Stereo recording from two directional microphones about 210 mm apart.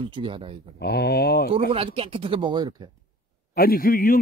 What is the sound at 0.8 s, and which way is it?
Speech, 50° left (ahead or behind).